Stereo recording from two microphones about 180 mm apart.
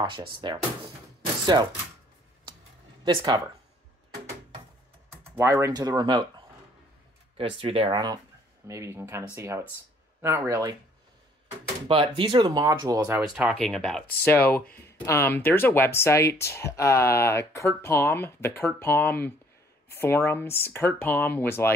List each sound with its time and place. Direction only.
0.4 s speech: 25° right (ahead or behind)
3.1 s speech: 25° right (ahead or behind)
5.1 s speech: 15° right (ahead or behind)
7.5 s speech: 30° right (ahead or behind)
11.9 s speech: 30° right (ahead or behind)
13.2 s speech: centre (ahead or behind)